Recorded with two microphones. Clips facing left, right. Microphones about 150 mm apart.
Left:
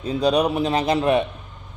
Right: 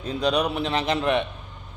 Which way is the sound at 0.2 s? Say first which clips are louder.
Left 4 dB; 35° left (ahead or behind).